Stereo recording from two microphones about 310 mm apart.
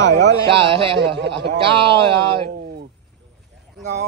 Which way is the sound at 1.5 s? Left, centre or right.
Centre.